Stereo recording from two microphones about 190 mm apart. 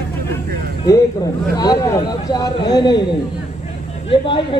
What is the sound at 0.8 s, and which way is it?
Speech, 20° left (ahead or behind).